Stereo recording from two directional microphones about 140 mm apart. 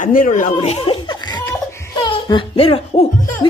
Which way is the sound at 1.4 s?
20° left (ahead or behind).